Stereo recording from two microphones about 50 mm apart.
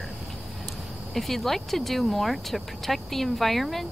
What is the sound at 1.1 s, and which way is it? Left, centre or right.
Speech, centre.